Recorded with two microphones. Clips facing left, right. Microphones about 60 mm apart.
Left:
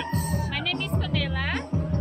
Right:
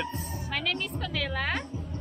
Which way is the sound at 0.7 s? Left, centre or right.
Centre.